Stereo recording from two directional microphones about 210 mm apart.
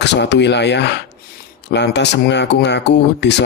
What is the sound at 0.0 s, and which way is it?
Speech, 55° left (ahead or behind).